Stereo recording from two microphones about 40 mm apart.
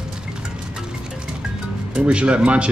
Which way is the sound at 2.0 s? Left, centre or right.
Right.